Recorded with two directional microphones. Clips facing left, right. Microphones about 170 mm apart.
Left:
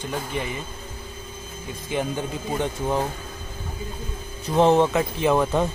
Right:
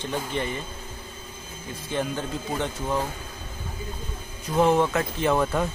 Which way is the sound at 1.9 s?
15° left (ahead or behind).